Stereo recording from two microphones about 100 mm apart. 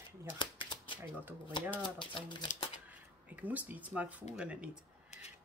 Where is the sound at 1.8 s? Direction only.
50° left (ahead or behind).